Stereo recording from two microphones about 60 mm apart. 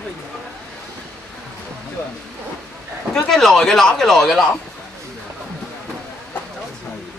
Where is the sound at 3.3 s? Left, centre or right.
Centre.